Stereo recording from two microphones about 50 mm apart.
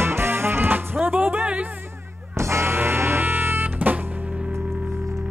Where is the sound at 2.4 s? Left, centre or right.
Right.